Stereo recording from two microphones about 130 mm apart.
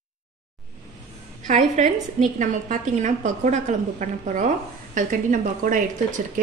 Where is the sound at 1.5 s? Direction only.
70° right (ahead or behind).